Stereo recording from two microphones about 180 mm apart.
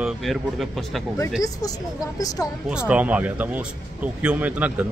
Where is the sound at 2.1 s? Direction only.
20° left (ahead or behind).